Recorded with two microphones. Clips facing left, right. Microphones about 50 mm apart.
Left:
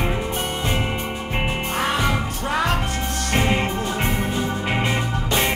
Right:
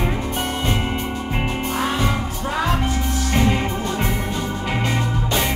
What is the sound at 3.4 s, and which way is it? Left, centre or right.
Music, left.